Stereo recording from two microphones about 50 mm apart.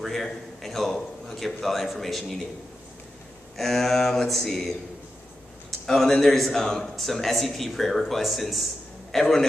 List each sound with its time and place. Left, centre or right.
0.0 s speech: centre
3.5 s speech: centre